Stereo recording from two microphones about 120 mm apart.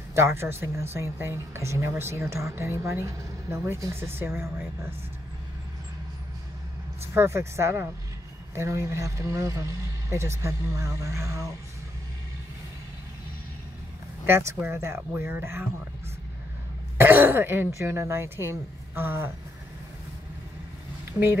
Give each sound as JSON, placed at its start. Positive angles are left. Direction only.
{"t": 0.1, "sound": "speech", "side_deg": -20}
{"t": 7.2, "sound": "speech", "side_deg": -20}
{"t": 14.2, "sound": "speech", "side_deg": -20}
{"t": 17.0, "sound": "throat clearing", "side_deg": -15}
{"t": 17.7, "sound": "speech", "side_deg": -20}